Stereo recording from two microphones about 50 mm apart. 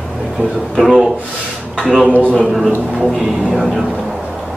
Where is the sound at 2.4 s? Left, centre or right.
Centre.